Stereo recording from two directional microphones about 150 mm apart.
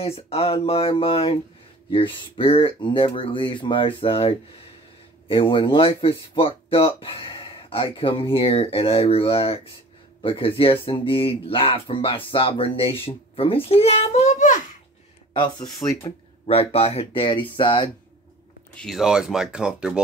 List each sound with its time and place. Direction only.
0.0 s a child's voice: 40° left (ahead or behind)
15.3 s speech: 30° left (ahead or behind)
16.4 s speech: 40° left (ahead or behind)
18.8 s speech: centre (ahead or behind)